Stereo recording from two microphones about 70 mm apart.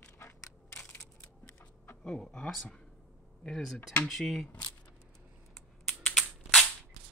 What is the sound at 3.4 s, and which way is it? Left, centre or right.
Speech, centre.